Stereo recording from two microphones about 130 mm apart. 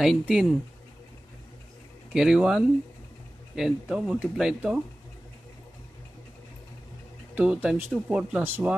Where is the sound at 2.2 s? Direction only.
5° right (ahead or behind).